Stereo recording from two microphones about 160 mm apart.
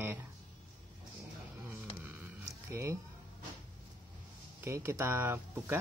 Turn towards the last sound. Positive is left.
turn(degrees=-15)  # may be behind; listen again after turning